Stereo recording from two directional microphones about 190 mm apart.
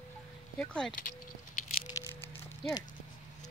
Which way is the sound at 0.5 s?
5° left (ahead or behind).